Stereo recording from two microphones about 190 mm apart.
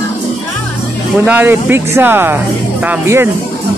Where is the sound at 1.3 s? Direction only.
10° right (ahead or behind).